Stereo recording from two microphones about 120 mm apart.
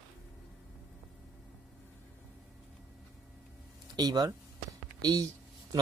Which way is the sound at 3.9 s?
35° right (ahead or behind).